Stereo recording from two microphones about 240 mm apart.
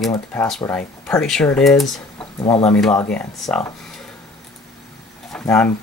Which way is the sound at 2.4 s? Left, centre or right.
Left.